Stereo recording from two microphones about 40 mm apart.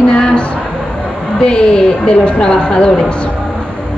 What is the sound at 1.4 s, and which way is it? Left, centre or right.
A woman's voice, left.